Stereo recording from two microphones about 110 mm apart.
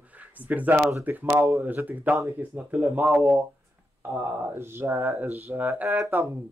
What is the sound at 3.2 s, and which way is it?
Speech, 30° right (ahead or behind).